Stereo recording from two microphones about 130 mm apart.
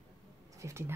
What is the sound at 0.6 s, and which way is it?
Speech, 20° right (ahead or behind).